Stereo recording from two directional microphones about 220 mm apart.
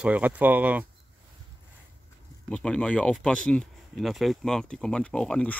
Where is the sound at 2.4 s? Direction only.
5° left (ahead or behind).